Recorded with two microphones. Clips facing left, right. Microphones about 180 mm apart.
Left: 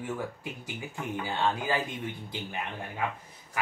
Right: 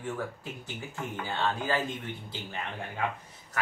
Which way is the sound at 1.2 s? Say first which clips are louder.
Left 2 dB; 15° left (ahead or behind).